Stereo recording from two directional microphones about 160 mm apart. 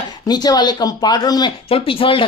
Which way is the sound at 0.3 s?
25° left (ahead or behind).